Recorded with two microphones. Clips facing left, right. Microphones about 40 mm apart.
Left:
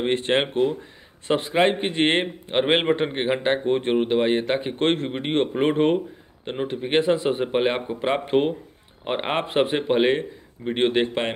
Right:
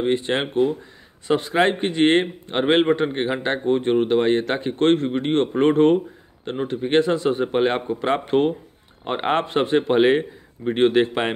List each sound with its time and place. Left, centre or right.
0.0 s speech: left
0.3 s speech: left
1.5 s a man's voice: centre
1.8 s a man's voice: left
4.0 s a man's voice: centre
9.4 s a man's voice: left
9.8 s a man's voice: centre